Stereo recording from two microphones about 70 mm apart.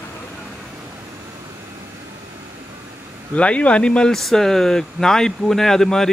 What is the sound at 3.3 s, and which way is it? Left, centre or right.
Speech, centre.